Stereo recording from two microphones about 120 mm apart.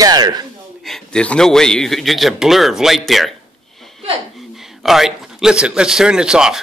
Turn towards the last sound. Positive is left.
turn(degrees=-5)  # may be behind; listen again after turning